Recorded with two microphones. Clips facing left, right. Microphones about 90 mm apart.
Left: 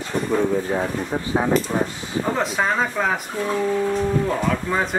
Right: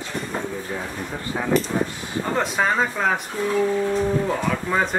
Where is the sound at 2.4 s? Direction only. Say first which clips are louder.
Right 2 dB; centre (ahead or behind).